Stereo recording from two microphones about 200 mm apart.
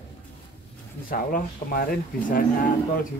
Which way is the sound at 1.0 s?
45° left (ahead or behind).